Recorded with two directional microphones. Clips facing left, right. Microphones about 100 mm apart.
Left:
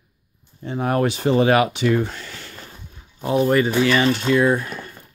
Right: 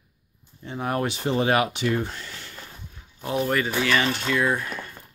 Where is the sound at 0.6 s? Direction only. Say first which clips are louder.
Left 6 dB; 75° left (ahead or behind).